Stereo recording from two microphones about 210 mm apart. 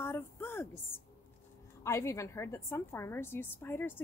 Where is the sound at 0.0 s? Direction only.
10° left (ahead or behind).